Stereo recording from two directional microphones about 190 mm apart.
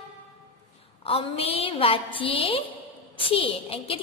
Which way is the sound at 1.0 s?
30° left (ahead or behind).